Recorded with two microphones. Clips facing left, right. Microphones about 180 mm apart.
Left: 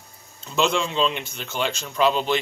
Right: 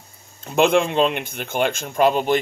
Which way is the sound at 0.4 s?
55° right (ahead or behind).